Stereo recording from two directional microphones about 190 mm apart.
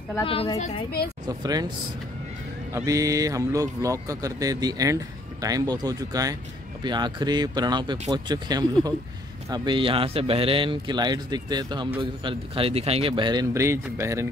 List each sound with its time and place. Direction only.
0.2 s a woman's voice: 30° left (ahead or behind)
1.2 s a man's voice: 20° right (ahead or behind)
2.7 s a man's voice: 20° right (ahead or behind)